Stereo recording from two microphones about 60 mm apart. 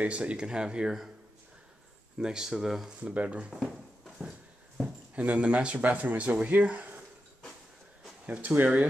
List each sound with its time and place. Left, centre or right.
0.0 s speech: right
2.1 s speech: centre
3.0 s speech: right
5.1 s speech: right
8.3 s speech: right